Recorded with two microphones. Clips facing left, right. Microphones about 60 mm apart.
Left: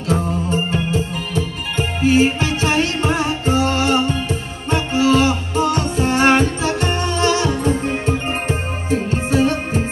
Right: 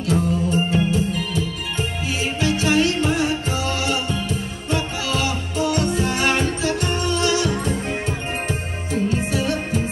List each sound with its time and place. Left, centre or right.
0.0 s music: left